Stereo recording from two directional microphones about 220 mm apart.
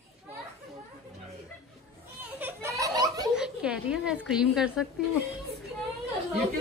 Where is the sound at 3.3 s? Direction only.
5° right (ahead or behind).